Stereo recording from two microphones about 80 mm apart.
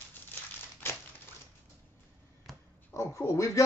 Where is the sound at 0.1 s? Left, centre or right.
Left.